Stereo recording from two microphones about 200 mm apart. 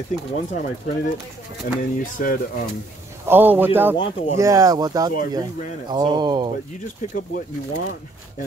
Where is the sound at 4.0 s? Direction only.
30° left (ahead or behind).